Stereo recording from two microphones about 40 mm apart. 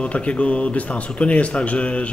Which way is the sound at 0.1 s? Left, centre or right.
Left.